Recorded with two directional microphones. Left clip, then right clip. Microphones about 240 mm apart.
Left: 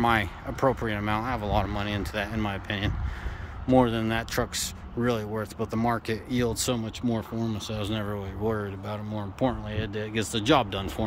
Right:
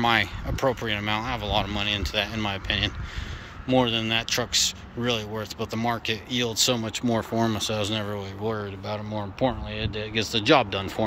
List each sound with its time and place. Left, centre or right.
0.0 s speech: centre
6.7 s speech: centre